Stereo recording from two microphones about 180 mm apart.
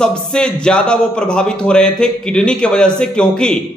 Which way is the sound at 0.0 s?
5° left (ahead or behind).